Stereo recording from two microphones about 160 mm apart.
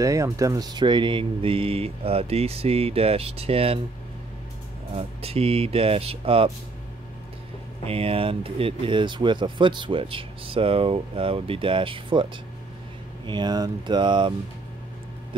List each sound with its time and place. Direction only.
0.0 s speech: 20° right (ahead or behind); by 3.8 s 35° right (ahead or behind)
4.9 s speech: 35° right (ahead or behind)
7.8 s speech: 35° right (ahead or behind)
13.3 s speech: 25° right (ahead or behind)